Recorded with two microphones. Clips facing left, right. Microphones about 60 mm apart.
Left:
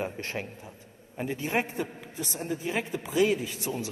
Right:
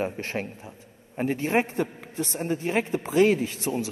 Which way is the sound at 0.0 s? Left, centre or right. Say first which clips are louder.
Right 4 dB; right.